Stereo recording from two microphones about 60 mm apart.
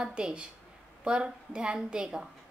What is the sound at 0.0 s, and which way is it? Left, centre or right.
A woman's voice, centre.